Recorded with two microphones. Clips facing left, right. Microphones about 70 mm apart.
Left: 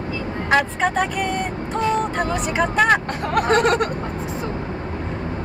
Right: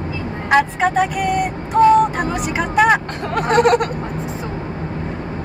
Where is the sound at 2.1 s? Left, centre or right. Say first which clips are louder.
Right 1 dB; centre.